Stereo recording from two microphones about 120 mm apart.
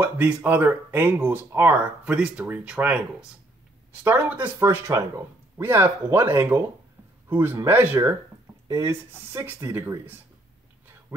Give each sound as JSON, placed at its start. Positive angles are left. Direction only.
{"t": 0.0, "sound": "speech", "side_deg": -15}